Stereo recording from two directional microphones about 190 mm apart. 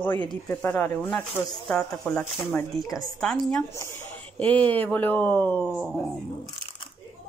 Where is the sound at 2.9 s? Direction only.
5° left (ahead or behind).